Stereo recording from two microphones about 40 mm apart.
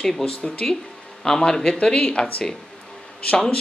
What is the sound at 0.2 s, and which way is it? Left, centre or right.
Speech, left.